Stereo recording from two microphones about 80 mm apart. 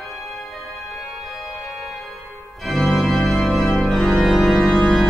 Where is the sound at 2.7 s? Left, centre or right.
Centre.